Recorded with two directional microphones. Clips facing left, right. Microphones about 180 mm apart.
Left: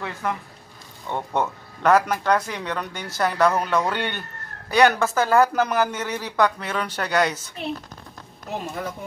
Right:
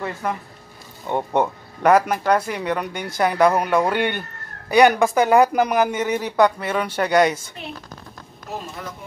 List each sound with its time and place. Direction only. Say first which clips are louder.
0.0 s speech: right 2 dB; 5° right (ahead or behind)
1.0 s speech: right 4 dB; 20° right (ahead or behind)